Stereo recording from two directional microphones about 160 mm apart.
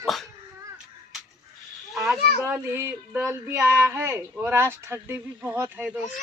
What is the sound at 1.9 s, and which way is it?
Child singing, 5° right (ahead or behind).